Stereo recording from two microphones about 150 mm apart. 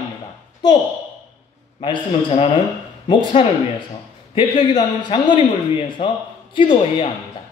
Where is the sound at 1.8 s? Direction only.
35° left (ahead or behind).